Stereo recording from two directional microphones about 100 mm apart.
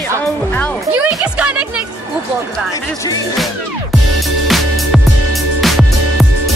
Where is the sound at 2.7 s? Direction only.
35° left (ahead or behind).